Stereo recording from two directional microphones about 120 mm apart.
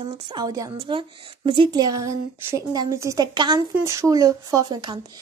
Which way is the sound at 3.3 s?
35° right (ahead or behind).